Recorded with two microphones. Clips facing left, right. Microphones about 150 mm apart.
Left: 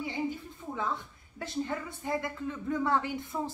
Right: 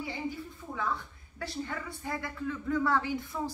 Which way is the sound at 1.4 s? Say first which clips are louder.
Left 3 dB; 20° left (ahead or behind).